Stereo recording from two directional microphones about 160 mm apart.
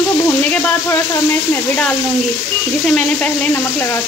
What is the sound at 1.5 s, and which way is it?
Speech, 10° left (ahead or behind).